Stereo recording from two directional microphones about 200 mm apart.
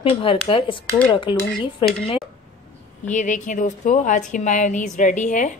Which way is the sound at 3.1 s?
40° left (ahead or behind).